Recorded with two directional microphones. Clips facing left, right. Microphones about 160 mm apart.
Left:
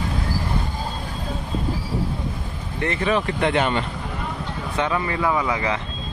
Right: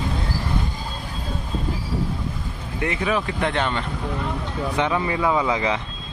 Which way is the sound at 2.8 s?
10° right (ahead or behind).